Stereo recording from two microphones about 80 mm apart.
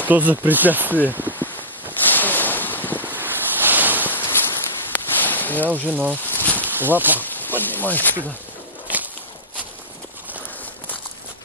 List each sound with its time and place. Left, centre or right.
0.0 s speech: right
2.0 s waves: left
3.0 s waves: right
4.2 s a sound: left
5.9 s speech: right
6.2 s a sound: left
6.7 s speech: right
7.2 s speech: left